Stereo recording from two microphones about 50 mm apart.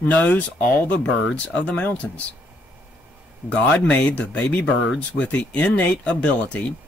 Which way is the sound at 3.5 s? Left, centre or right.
Left.